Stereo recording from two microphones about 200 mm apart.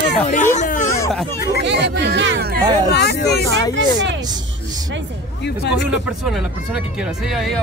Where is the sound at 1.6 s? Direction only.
60° right (ahead or behind).